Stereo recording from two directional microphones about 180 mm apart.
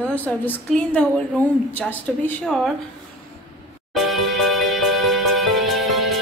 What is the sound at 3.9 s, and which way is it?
Music, centre (ahead or behind).